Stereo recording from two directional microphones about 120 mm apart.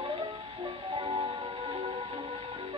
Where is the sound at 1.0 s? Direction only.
45° right (ahead or behind).